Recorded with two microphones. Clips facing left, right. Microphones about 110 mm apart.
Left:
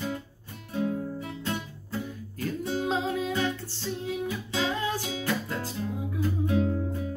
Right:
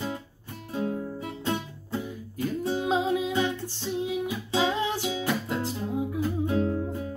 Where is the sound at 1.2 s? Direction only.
20° right (ahead or behind).